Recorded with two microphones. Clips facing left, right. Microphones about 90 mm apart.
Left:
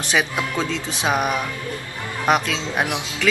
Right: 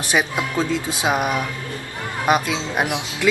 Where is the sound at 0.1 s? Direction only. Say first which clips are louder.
Right 1 dB; 10° right (ahead or behind).